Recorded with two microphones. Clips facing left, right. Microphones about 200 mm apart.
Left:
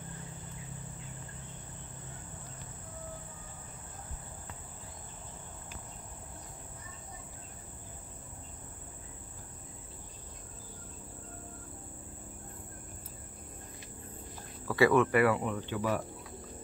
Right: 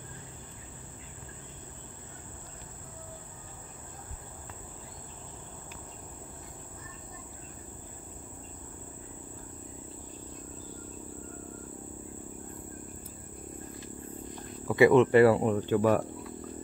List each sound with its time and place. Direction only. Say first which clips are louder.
14.7 s speech: right 5 dB; 20° right (ahead or behind); by 16.1 s 50° right (ahead or behind)